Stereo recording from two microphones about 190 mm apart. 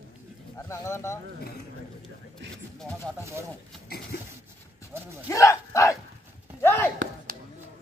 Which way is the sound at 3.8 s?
55° left (ahead or behind).